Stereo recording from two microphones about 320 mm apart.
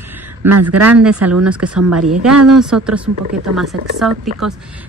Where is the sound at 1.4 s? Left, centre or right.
Centre.